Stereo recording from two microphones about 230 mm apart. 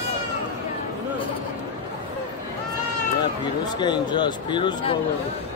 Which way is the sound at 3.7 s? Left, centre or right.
Centre.